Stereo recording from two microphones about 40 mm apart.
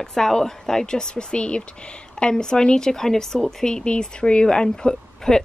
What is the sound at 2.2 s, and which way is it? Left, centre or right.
Speech, centre.